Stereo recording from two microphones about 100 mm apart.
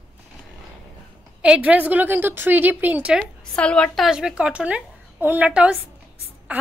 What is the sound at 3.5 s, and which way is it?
Speech, 10° left (ahead or behind).